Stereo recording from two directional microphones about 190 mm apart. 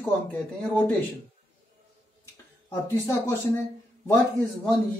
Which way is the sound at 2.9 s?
15° left (ahead or behind).